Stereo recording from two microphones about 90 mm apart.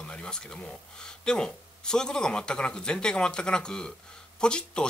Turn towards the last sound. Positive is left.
turn(degrees=10)  # may be behind; listen again after turning